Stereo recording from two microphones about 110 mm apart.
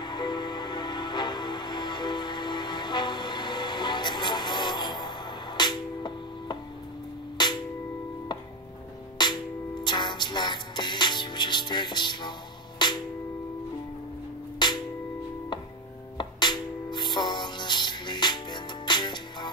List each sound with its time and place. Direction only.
0.0 s music: 40° left (ahead or behind)
9.2 s music: 40° left (ahead or behind)
14.6 s music: 40° left (ahead or behind)
16.2 s music: 45° left (ahead or behind)